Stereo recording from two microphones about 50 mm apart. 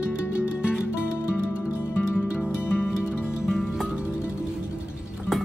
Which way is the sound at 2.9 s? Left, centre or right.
Centre.